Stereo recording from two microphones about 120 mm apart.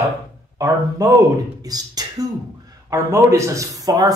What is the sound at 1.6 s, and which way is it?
Speech, 30° right (ahead or behind).